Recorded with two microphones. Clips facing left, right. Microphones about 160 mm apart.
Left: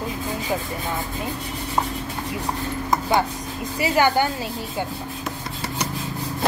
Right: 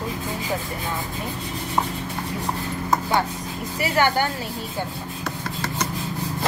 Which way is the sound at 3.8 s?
20° left (ahead or behind).